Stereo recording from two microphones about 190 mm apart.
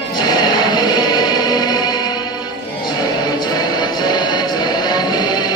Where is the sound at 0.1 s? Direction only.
20° left (ahead or behind).